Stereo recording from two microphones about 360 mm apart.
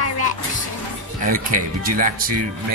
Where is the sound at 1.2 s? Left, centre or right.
Right.